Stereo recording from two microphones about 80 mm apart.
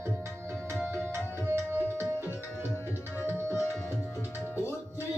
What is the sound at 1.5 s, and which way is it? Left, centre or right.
Tabla, right.